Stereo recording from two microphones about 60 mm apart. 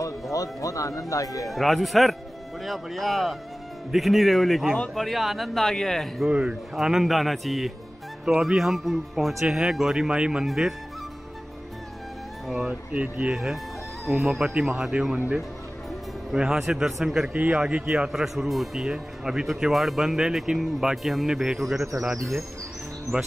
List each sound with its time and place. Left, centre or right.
0.0 s a man's voice: left
1.5 s speech: centre
9.9 s speech: centre
10.4 s speech: centre
12.6 s speech: right
13.3 s speech: centre
15.1 s speech: right
16.3 s speech: centre
17.3 s speech: right
17.8 s speech: centre
23.1 s speech: right